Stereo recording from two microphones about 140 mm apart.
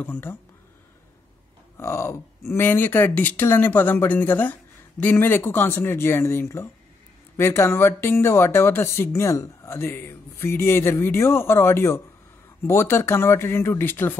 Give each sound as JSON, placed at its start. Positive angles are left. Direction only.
{"t": 0.0, "sound": "speech", "side_deg": 15}
{"t": 1.8, "sound": "speech", "side_deg": 15}